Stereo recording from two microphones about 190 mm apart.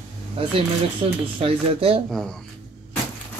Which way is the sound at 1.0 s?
30° right (ahead or behind).